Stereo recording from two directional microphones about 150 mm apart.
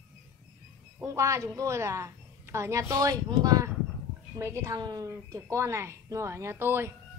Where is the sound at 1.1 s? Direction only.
20° right (ahead or behind).